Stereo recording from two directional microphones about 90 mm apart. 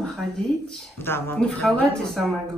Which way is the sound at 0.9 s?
25° left (ahead or behind).